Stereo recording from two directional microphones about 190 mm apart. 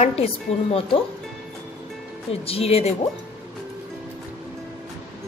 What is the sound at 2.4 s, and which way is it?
Speech, 30° left (ahead or behind).